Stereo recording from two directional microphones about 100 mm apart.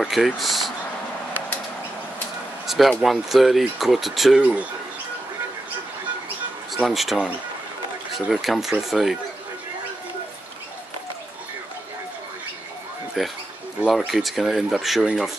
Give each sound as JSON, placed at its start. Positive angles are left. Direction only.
{"t": 0.0, "sound": "speech", "side_deg": 0}
{"t": 2.6, "sound": "a sound", "side_deg": 0}
{"t": 3.0, "sound": "speech", "side_deg": 0}
{"t": 4.4, "sound": "speech", "side_deg": -10}
{"t": 6.7, "sound": "speech", "side_deg": 0}
{"t": 8.3, "sound": "speech", "side_deg": 0}
{"t": 13.2, "sound": "speech", "side_deg": 0}